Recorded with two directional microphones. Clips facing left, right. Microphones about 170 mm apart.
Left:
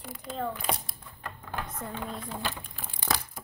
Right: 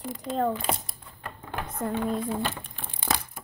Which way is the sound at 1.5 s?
20° right (ahead or behind).